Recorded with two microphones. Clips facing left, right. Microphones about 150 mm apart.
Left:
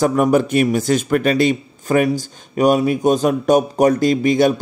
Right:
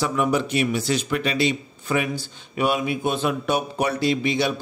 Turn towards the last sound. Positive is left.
turn(degrees=45)  # may be behind; listen again after turning